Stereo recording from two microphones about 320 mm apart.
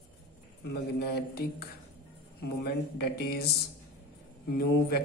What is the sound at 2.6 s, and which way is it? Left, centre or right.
Speech, left.